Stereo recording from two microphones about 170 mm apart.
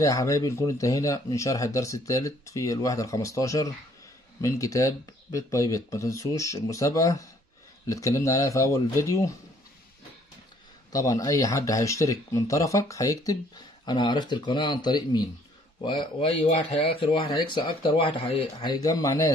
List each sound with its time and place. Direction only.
0.0 s speech: 20° left (ahead or behind)
10.9 s speech: 20° left (ahead or behind)